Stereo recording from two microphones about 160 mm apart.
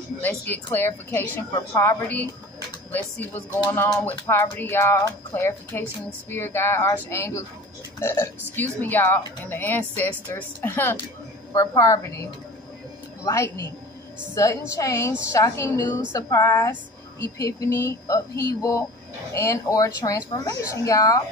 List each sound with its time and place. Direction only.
0.2 s a woman's voice: 10° left (ahead or behind)